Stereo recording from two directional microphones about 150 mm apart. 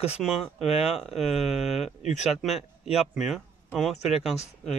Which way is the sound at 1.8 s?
50° left (ahead or behind).